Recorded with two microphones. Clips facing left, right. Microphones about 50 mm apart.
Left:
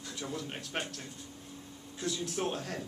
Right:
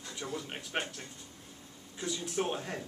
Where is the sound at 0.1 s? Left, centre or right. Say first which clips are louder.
Even; centre.